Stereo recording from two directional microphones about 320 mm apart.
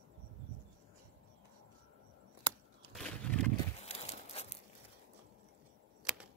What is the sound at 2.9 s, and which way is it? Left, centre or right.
Wild animals, centre.